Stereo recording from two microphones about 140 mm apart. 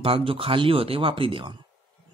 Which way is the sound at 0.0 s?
40° right (ahead or behind).